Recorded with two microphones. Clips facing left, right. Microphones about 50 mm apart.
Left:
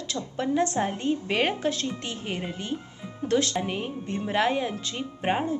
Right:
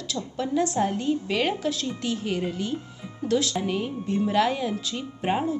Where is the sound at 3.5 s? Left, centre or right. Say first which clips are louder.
Right 2 dB; left.